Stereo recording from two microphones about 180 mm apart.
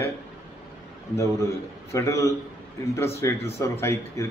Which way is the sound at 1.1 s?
15° left (ahead or behind).